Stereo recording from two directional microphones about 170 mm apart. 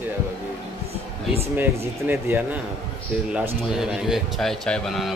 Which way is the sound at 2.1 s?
10° right (ahead or behind).